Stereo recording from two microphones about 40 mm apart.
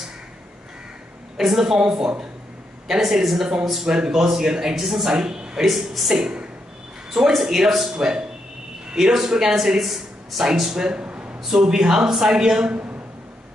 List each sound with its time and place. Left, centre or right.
1.3 s a man's voice: centre
3.0 s a man's voice: centre
5.7 s a man's voice: centre
6.2 s a sound: right
7.1 s a man's voice: centre
10.9 s a sound: right
11.4 s a man's voice: centre